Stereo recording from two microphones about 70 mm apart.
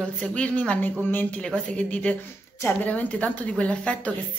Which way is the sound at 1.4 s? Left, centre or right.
Centre.